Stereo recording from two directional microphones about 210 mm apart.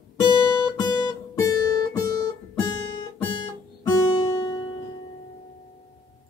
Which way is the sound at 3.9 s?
90° left.